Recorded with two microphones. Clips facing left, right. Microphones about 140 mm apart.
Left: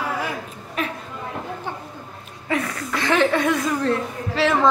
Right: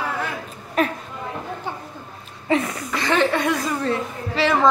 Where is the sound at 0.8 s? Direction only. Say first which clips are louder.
Right 6 dB; 40° right (ahead or behind).